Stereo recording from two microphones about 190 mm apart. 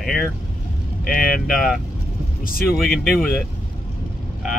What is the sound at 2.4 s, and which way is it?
Speech, 50° left (ahead or behind).